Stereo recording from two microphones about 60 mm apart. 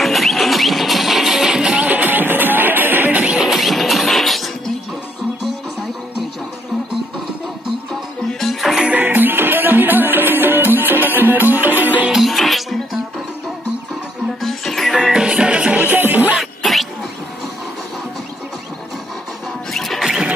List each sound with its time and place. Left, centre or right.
0.0 s music: centre
1.9 s music: right
3.3 s music: centre
8.3 s music: centre
8.8 s music: right
12.1 s music: centre
14.4 s music: centre
15.0 s music: centre
15.9 s music: right
16.3 s a sound: centre
19.7 s music: centre